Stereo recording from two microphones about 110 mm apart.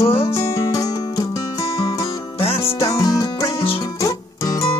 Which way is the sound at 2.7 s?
30° left (ahead or behind).